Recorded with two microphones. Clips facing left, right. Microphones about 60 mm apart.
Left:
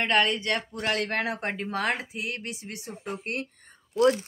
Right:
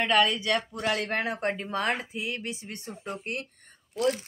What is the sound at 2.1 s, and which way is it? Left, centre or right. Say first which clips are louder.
Speech: right 1 dB; left.